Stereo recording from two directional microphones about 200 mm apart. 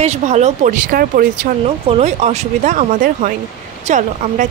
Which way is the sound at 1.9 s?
35° right (ahead or behind).